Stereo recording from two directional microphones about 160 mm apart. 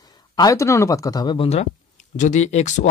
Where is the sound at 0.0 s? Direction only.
25° left (ahead or behind).